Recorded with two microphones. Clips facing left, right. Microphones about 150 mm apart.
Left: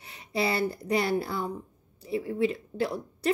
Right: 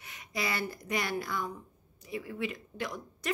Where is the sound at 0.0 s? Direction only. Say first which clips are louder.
Left 7 dB; 30° left (ahead or behind).